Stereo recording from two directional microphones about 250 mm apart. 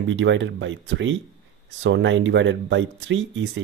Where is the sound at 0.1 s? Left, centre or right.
Right.